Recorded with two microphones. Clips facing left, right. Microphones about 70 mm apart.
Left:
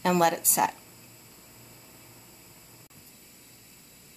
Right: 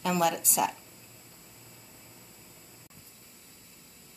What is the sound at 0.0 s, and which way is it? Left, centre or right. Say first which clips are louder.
Speech: left 4 dB; left.